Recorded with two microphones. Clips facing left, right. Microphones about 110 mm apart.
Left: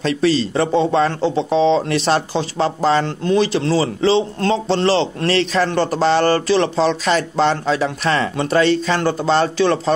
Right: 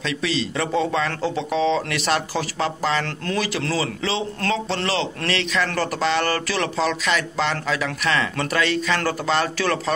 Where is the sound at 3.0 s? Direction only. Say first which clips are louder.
Left 8 dB; 20° left (ahead or behind).